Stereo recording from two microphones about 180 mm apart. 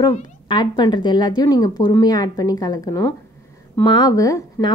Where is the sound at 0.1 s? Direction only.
25° left (ahead or behind).